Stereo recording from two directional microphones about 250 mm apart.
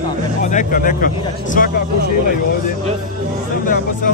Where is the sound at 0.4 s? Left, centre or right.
Left.